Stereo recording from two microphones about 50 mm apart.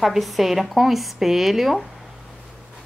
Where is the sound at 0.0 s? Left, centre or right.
Centre.